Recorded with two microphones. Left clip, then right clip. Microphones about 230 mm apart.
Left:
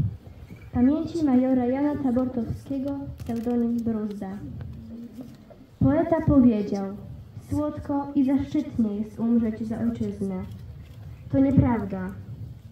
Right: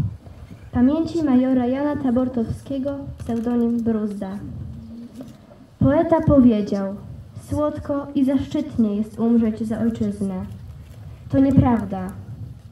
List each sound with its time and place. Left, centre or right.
0.7 s a woman's voice: right
5.8 s a woman's voice: right